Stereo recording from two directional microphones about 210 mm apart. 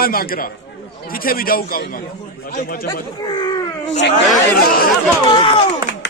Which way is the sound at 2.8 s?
20° left (ahead or behind).